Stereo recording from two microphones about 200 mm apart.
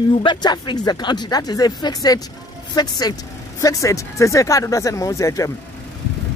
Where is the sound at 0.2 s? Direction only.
20° left (ahead or behind).